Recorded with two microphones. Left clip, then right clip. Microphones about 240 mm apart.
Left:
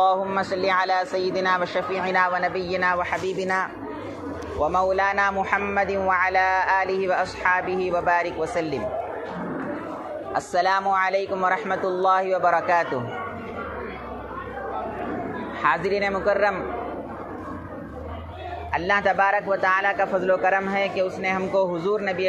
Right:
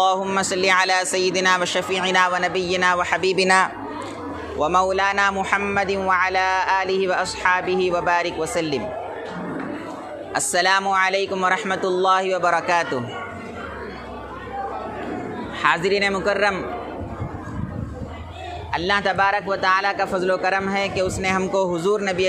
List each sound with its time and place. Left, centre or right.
0.0 s speech: right
10.3 s speech: right
15.6 s speech: right
18.9 s speech: right